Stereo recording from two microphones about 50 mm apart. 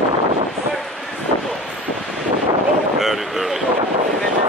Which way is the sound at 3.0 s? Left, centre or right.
Centre.